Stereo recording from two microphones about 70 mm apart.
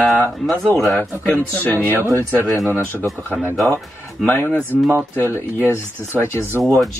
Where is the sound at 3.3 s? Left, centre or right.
Right.